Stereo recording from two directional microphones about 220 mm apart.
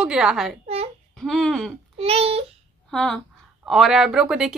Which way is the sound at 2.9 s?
Centre (ahead or behind).